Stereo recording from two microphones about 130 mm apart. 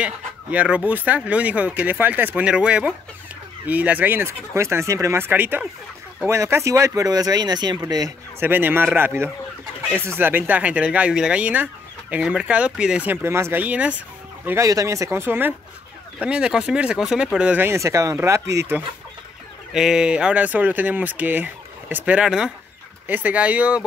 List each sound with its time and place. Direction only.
0.0 s speech: 10° right (ahead or behind); by 8.1 s 30° right (ahead or behind)
8.4 s speech: 15° right (ahead or behind)
19.7 s speech: 5° right (ahead or behind)